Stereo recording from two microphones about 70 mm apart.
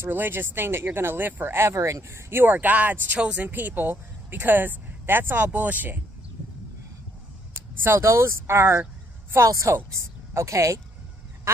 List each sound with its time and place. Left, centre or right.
0.0 s speech: right
7.7 s speech: right
9.5 s a woman's voice: right